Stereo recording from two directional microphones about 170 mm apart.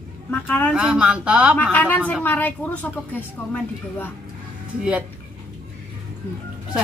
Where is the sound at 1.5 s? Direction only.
10° left (ahead or behind).